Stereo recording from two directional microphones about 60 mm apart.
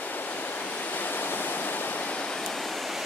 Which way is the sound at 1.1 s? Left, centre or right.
Left.